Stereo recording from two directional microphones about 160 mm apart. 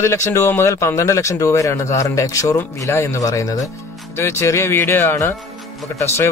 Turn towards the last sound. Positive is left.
turn(degrees=15)  # may be behind; listen again after turning